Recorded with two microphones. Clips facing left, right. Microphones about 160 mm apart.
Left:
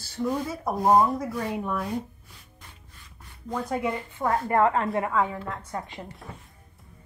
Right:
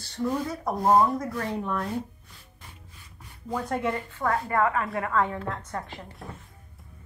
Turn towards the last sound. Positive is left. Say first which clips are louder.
# right 1 dB
turn(degrees=0)  # may be behind; listen again after turning